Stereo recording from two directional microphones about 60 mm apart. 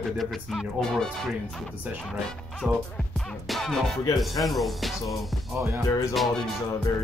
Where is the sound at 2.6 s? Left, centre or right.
Centre.